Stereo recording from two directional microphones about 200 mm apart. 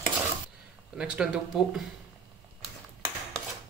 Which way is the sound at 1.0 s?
5° right (ahead or behind).